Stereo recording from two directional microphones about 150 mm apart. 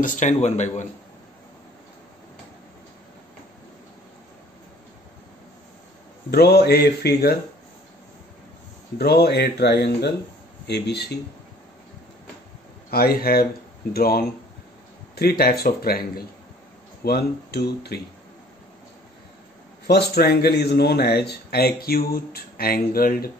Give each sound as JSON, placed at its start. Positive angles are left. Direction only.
{"t": 0.0, "sound": "a man's voice", "side_deg": 55}
{"t": 6.3, "sound": "a man's voice", "side_deg": 90}
{"t": 8.9, "sound": "a man's voice", "side_deg": 90}
{"t": 12.9, "sound": "a man's voice", "side_deg": 90}
{"t": 19.9, "sound": "a man's voice", "side_deg": 90}